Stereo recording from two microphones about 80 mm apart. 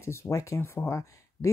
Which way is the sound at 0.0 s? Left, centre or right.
Left.